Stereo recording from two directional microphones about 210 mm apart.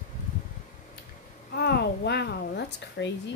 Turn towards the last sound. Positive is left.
turn(degrees=60)  # may be behind; listen again after turning